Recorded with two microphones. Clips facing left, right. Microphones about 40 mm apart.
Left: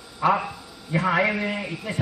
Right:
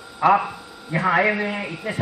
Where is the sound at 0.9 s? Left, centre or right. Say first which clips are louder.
Right 3 dB; right.